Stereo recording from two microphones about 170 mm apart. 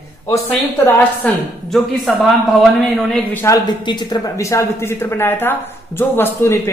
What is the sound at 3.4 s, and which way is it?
Speech, 25° left (ahead or behind).